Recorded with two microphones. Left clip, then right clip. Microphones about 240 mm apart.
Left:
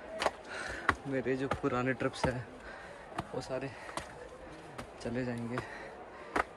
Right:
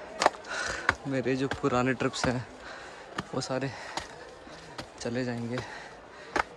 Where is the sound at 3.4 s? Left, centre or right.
Right.